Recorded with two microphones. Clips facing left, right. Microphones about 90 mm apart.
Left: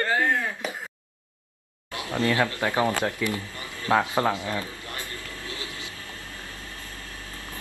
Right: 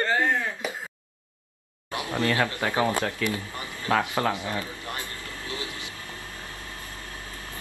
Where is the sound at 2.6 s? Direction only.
20° left (ahead or behind).